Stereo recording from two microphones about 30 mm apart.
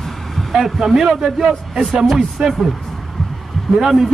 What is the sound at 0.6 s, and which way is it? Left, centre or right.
Speech, centre.